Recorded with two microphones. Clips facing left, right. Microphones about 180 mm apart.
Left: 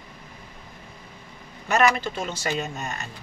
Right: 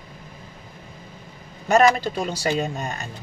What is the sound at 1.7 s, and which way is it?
Speech, 35° right (ahead or behind).